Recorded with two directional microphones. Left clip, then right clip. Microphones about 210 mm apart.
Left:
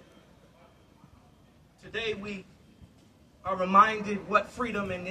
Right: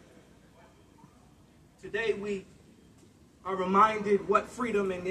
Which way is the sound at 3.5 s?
50° left (ahead or behind).